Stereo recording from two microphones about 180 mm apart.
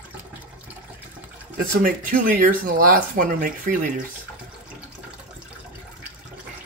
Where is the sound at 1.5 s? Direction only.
50° right (ahead or behind).